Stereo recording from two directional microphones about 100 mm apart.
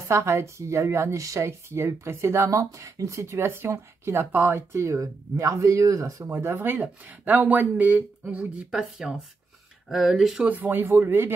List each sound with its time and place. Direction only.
0.1 s speech: 30° right (ahead or behind); by 10.5 s 5° right (ahead or behind)
10.5 s speech: 20° right (ahead or behind)